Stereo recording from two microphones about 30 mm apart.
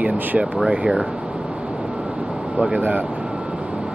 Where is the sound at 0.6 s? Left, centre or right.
Right.